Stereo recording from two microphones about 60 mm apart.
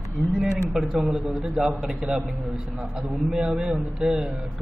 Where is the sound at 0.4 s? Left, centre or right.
Centre.